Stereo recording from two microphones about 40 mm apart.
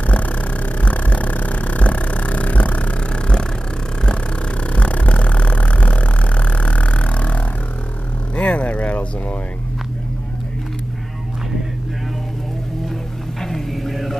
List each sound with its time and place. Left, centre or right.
0.0 s a sound: left
4.7 s vehicle: left
13.4 s vehicle: centre